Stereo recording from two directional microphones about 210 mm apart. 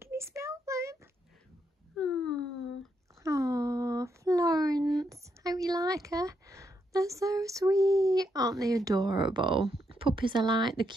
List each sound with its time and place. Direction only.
0.0 s child singing: 15° right (ahead or behind)
2.0 s wail: 5° left (ahead or behind)
3.3 s a sound: 15° right (ahead or behind)